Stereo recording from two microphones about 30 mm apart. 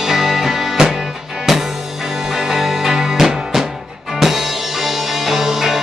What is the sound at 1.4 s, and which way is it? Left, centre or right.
Music, centre.